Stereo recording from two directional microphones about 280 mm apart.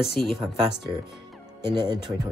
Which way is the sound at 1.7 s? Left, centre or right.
Centre.